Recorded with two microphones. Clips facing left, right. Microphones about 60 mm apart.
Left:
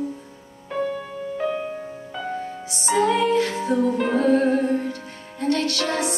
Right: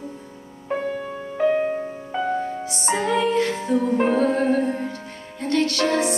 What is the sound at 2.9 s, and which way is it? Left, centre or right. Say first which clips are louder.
Music: left 2 dB; right.